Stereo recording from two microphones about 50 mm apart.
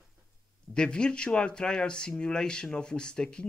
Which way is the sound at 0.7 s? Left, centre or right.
Centre.